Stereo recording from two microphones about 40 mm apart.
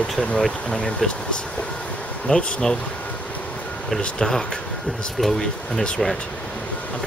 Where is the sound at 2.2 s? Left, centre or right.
Centre.